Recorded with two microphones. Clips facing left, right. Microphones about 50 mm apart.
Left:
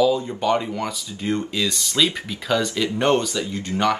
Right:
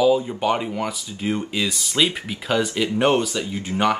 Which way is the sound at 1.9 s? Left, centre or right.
Right.